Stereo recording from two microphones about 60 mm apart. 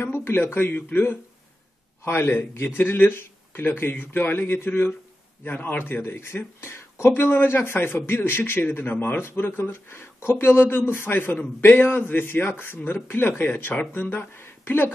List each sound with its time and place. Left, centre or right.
0.0 s speech: left
5.4 s speech: left
6.0 s speech: left